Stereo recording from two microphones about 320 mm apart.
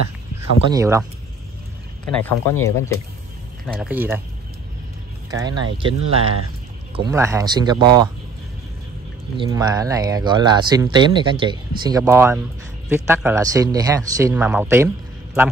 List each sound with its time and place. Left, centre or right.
0.7 s speech: centre
2.1 s speech: centre
5.3 s speech: centre
9.4 s speech: centre